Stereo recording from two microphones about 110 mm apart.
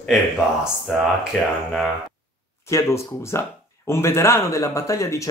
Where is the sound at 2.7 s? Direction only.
25° left (ahead or behind).